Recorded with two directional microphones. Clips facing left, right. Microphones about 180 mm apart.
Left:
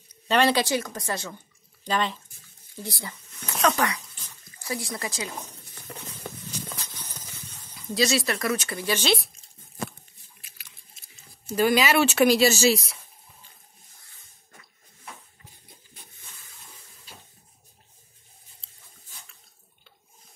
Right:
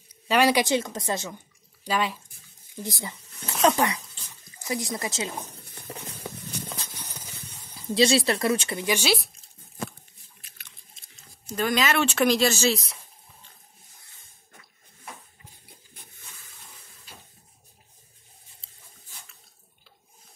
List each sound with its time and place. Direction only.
0.3 s speech: 10° right (ahead or behind)
1.9 s speech: 10° right (ahead or behind)
2.7 s a sound: 15° right (ahead or behind)
3.6 s speech: 20° right (ahead or behind)
5.4 s a sound: 55° right (ahead or behind)
6.7 s horse: 15° right (ahead or behind)
7.7 s speech: 30° right (ahead or behind); by 9.9 s centre (ahead or behind)
10.4 s chewing: 5° left (ahead or behind)